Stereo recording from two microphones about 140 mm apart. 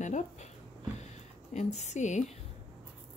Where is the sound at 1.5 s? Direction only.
55° left (ahead or behind).